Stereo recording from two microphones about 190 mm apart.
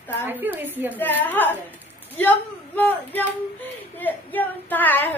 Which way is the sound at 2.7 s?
10° left (ahead or behind).